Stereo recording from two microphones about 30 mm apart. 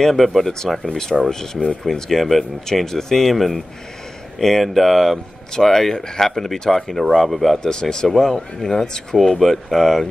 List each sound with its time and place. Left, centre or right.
0.0 s speech: centre
0.8 s speech: centre
2.0 s speech: centre
2.6 s speech: centre
5.9 s speech: left
6.2 s speech: centre
7.6 s speech: left
8.2 s speech: centre